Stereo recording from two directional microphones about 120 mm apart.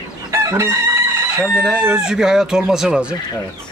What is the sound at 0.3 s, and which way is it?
Chicken, 25° right (ahead or behind).